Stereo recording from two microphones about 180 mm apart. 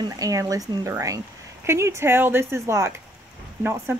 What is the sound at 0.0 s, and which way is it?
Speech, 20° right (ahead or behind).